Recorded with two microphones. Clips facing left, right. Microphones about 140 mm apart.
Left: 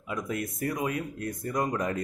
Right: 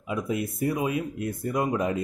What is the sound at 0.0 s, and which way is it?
Speech, 25° right (ahead or behind).